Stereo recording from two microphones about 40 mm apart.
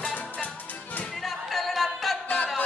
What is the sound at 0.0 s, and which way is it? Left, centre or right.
Music, left.